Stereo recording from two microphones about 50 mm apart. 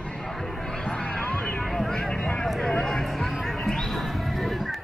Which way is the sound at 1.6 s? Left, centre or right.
Centre.